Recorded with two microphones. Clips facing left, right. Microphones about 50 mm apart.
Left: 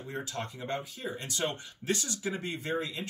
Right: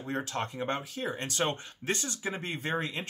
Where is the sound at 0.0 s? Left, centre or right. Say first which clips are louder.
Right 4 dB; right.